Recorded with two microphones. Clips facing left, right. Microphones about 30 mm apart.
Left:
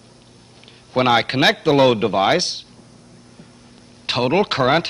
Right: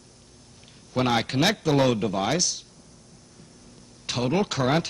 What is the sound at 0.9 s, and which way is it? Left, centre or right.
A man's voice, left.